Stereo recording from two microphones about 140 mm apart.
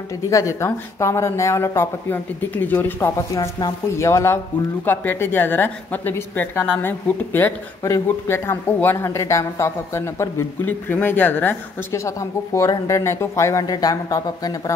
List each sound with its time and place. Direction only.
0.3 s speech: 20° left (ahead or behind)